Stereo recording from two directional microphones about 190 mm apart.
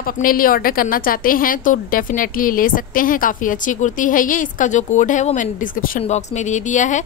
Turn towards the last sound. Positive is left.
turn(degrees=40)  # may be behind; listen again after turning